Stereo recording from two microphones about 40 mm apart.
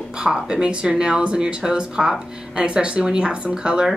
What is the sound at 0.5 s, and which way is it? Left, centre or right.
Speech, right.